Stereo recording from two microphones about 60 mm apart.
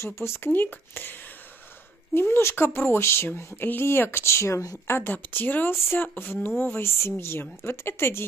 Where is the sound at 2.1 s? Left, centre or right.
Left.